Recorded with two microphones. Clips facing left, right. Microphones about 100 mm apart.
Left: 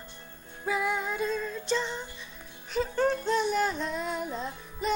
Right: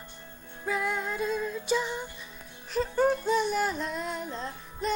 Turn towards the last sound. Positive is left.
turn(degrees=5)  # may be behind; listen again after turning